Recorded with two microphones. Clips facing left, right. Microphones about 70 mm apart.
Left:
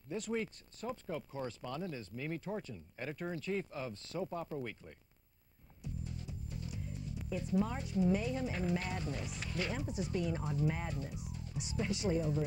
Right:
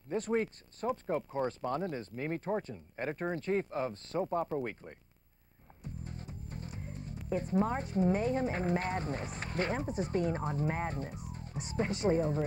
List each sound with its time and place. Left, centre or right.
0.1 s speech: right
5.8 s music: right
7.2 s speech: right